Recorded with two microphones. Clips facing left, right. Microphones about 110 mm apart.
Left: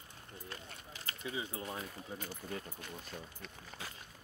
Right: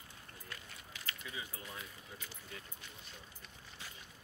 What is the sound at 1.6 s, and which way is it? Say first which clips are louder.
Speech: left 7 dB; 45° left (ahead or behind).